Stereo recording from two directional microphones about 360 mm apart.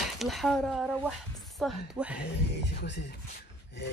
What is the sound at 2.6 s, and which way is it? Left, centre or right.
Speech, left.